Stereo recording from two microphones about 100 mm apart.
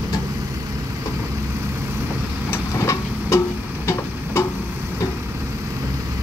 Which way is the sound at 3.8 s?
25° left (ahead or behind).